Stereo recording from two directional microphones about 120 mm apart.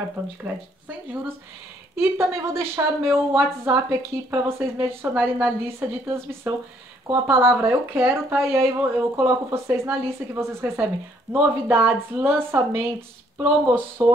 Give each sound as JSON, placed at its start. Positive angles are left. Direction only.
{"t": 0.2, "sound": "a woman's voice", "side_deg": -10}
{"t": 2.0, "sound": "a woman's voice", "side_deg": -20}